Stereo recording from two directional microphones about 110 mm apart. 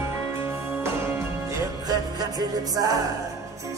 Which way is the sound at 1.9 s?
35° right (ahead or behind).